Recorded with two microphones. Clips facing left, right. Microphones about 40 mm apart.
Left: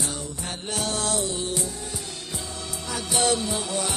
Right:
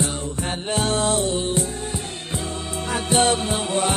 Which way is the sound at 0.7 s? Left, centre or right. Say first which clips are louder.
Right 6 dB; right.